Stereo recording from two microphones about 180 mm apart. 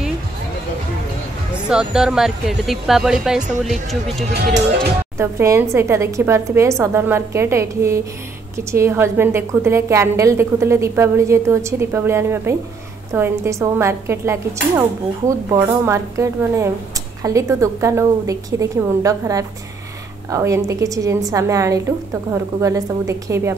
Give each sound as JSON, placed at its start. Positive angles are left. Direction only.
{"t": 1.7, "sound": "speech", "side_deg": -5}
{"t": 5.1, "sound": "a woman's voice", "side_deg": -15}